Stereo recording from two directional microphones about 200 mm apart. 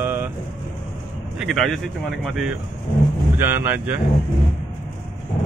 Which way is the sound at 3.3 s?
10° right (ahead or behind).